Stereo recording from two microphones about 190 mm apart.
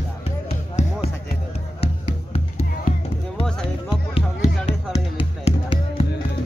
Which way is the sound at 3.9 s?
30° left (ahead or behind).